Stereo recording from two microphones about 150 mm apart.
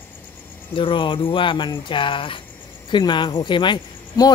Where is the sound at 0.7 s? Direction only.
35° left (ahead or behind).